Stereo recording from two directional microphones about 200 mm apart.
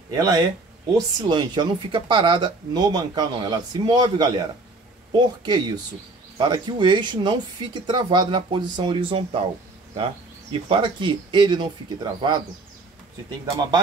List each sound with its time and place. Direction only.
0.1 s speech: 20° right (ahead or behind)
10.5 s speech: 25° right (ahead or behind)